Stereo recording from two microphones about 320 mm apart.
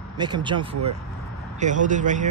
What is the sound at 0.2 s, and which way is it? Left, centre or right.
Speech, centre.